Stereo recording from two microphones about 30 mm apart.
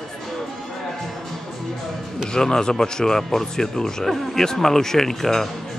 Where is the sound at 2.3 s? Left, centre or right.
Left.